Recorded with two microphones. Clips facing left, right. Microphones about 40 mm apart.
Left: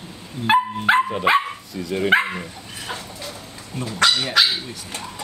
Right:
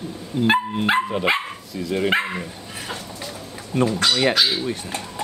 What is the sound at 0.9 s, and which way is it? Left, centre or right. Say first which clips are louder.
Speech: left 3 dB; centre.